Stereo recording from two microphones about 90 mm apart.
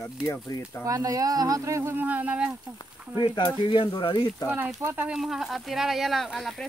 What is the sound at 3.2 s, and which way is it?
Speech, 70° left (ahead or behind).